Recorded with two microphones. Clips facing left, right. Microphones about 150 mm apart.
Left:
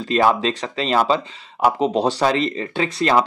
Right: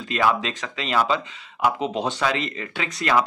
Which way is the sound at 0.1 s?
35° left (ahead or behind).